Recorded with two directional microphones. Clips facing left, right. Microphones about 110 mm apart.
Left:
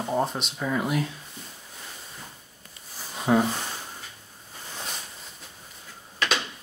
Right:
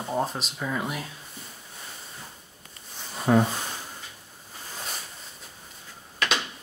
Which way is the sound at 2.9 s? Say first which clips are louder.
Right 1 dB; 5° left (ahead or behind).